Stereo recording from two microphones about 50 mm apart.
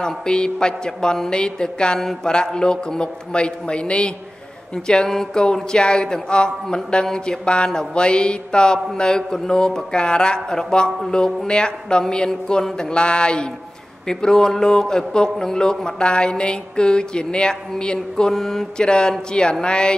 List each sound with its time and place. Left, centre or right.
0.0 s a man's voice: centre